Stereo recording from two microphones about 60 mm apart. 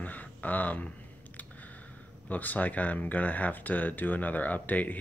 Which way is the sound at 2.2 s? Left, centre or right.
Left.